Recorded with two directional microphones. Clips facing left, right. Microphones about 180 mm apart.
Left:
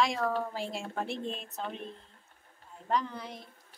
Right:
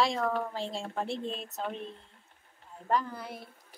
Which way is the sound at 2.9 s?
5° right (ahead or behind).